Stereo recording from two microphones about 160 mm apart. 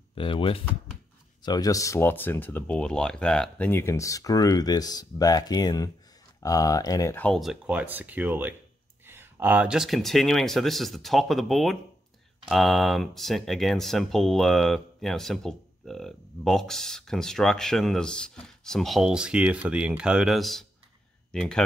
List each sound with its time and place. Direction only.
0.1 s speech: 35° left (ahead or behind)
7.2 s speech: 5° left (ahead or behind)